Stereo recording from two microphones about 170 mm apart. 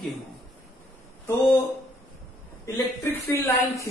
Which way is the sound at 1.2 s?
15° left (ahead or behind).